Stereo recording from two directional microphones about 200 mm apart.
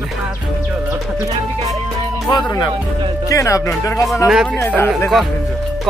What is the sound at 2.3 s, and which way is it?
A man's voice, 20° left (ahead or behind).